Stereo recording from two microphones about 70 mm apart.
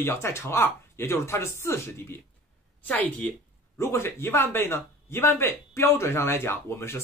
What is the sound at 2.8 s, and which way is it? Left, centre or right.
Speech, centre.